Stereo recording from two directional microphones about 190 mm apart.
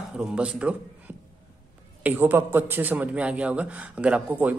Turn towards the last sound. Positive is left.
turn(degrees=-5)  # may be behind; listen again after turning